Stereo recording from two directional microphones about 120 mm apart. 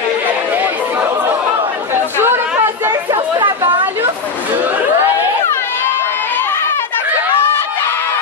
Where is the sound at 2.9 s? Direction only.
35° right (ahead or behind).